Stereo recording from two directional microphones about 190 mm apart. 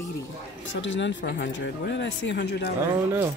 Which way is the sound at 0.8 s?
75° left (ahead or behind).